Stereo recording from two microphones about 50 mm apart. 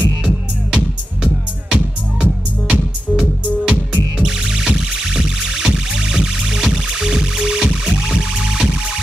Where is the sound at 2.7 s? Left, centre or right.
Centre.